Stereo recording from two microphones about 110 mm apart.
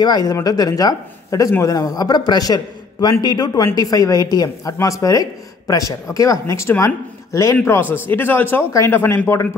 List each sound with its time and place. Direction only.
0.0 s a man's voice: 35° left (ahead or behind); by 9.2 s 20° left (ahead or behind)